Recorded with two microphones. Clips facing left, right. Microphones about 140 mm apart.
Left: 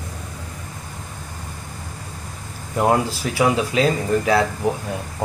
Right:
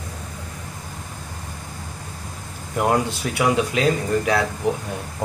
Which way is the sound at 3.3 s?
Centre (ahead or behind).